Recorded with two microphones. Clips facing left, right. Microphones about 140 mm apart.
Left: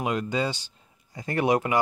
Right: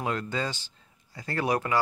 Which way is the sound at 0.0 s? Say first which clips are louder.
Left 4 dB; 15° left (ahead or behind).